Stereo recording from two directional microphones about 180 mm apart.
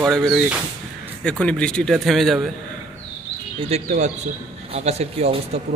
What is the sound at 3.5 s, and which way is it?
A man's voice, 35° right (ahead or behind).